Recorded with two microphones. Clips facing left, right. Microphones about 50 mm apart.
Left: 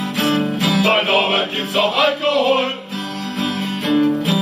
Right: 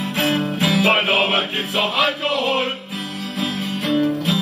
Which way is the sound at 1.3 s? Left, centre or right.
Centre.